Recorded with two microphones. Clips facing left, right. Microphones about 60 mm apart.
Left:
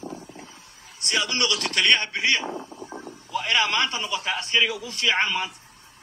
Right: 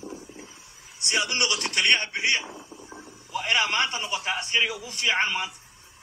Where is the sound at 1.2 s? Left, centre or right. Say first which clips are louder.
Left 2 dB; left.